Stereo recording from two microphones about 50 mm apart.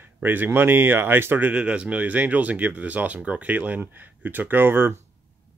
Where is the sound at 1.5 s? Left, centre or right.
Right.